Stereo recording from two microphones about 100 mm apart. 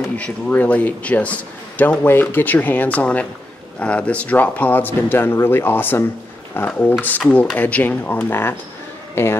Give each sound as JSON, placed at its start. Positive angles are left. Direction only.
{"t": 0.1, "sound": "a man's voice", "side_deg": 15}